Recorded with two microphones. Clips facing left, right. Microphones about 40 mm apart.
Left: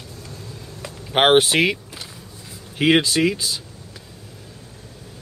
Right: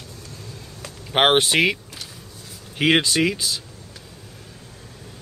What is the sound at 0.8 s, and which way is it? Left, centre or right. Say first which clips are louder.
Speech: left 1 dB; centre.